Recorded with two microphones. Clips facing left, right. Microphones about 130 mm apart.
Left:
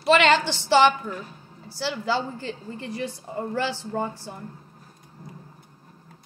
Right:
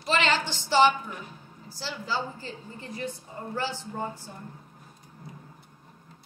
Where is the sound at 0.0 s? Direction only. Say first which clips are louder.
Left 7 dB; 70° left (ahead or behind).